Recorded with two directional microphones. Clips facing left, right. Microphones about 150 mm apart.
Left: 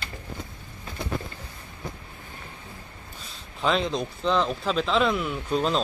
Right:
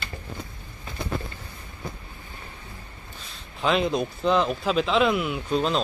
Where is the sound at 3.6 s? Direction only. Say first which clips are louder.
Right 2 dB; 10° right (ahead or behind).